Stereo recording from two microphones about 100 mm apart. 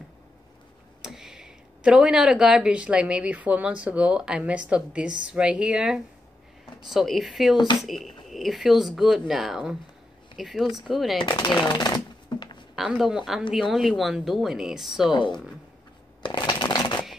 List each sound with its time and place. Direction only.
1.0 s speech: 5° right (ahead or behind)
11.1 s speech: 50° left (ahead or behind)
11.7 s a sound: 45° left (ahead or behind)
12.7 s speech: 5° right (ahead or behind)
16.2 s shuffling cards: 50° left (ahead or behind)